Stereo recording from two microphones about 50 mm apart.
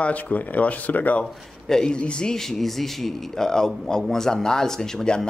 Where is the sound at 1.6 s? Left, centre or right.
Centre.